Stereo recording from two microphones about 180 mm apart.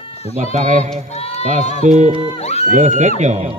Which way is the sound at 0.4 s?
40° right (ahead or behind).